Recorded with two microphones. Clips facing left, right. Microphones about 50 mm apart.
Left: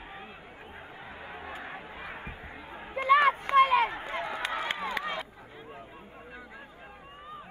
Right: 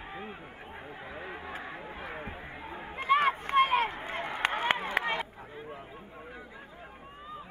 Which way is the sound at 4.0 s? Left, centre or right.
Right.